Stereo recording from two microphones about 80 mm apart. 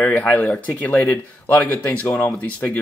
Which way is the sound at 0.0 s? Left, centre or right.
Centre.